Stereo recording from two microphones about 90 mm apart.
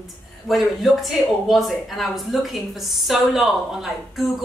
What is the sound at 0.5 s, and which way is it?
A woman's voice, centre (ahead or behind).